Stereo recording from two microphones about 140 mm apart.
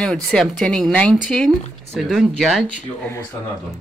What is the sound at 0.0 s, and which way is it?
Speech, 5° left (ahead or behind).